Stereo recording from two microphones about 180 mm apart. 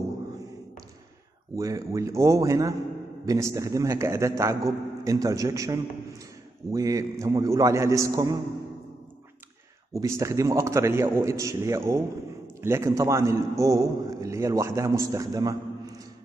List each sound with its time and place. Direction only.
1.5 s a man's voice: 20° right (ahead or behind)
9.9 s a man's voice: 15° right (ahead or behind)